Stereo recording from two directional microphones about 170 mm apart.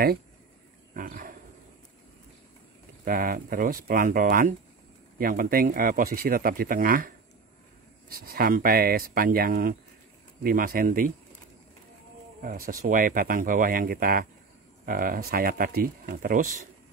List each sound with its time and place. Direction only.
0.9 s wild animals: 55° right (ahead or behind)
3.1 s speech: 60° right (ahead or behind)
8.1 s speech: 60° right (ahead or behind)
12.4 s speech: 55° right (ahead or behind)